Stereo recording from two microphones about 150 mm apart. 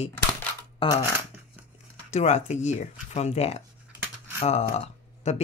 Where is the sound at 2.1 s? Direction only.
50° left (ahead or behind).